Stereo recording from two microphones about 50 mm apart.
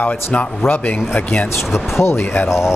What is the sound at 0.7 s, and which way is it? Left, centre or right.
Speech, left.